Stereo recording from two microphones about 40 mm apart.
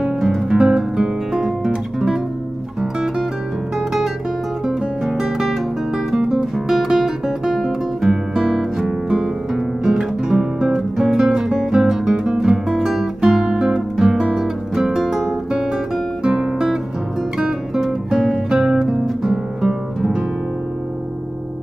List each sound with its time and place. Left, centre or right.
0.0 s guitar: centre
1.3 s guitar: centre
4.6 s music: centre
6.1 s guitar: centre
11.0 s music: centre
12.6 s guitar: centre
17.4 s music: centre